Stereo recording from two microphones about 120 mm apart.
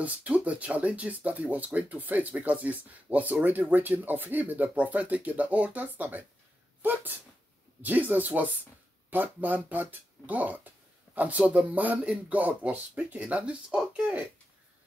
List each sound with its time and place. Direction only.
0.0 s speech: 10° right (ahead or behind)
6.8 s sneeze: 15° right (ahead or behind)
7.8 s speech: 15° right (ahead or behind)